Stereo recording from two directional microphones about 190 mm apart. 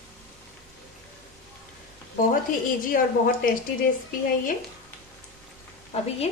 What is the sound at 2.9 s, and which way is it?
Speech, 45° left (ahead or behind).